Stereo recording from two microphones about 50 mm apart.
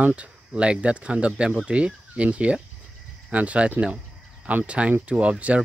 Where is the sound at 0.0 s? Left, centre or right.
Right.